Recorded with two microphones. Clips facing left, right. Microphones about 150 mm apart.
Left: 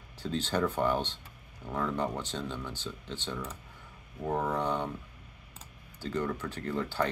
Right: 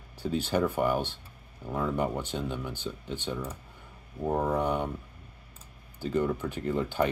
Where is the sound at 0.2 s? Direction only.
10° right (ahead or behind).